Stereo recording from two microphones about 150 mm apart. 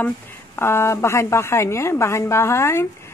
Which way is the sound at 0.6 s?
15° left (ahead or behind).